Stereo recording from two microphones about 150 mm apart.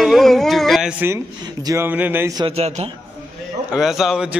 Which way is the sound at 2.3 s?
40° right (ahead or behind).